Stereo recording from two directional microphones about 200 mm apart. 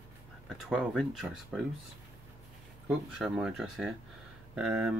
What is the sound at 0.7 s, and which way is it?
Speech, centre (ahead or behind).